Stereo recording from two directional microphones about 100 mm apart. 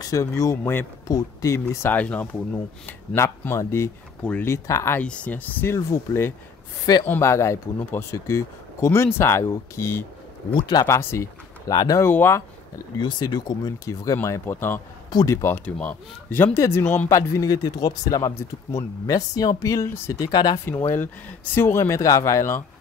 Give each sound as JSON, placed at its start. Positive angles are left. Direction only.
{"t": 0.0, "sound": "speech", "side_deg": 35}
{"t": 1.9, "sound": "speech", "side_deg": 15}
{"t": 3.2, "sound": "speech", "side_deg": 25}
{"t": 4.2, "sound": "speech", "side_deg": 15}
{"t": 4.5, "sound": "speech", "side_deg": 30}
{"t": 5.0, "sound": "speech", "side_deg": 10}
{"t": 10.5, "sound": "speech", "side_deg": 45}
{"t": 10.9, "sound": "speech", "side_deg": 25}
{"t": 11.7, "sound": "speech", "side_deg": 45}
{"t": 12.0, "sound": "speech", "side_deg": 25}
{"t": 13.0, "sound": "speech", "side_deg": 50}
{"t": 16.5, "sound": "speech", "side_deg": 30}
{"t": 20.2, "sound": "speech", "side_deg": 45}
{"t": 20.8, "sound": "speech", "side_deg": 20}